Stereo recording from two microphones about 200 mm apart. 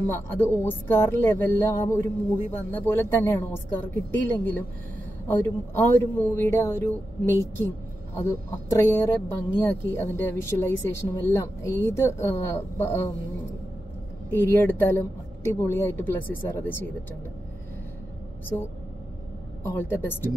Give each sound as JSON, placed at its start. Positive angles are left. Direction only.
{"t": 0.0, "sound": "speech", "side_deg": 10}
{"t": 14.3, "sound": "speech", "side_deg": 10}
{"t": 19.6, "sound": "speech", "side_deg": 10}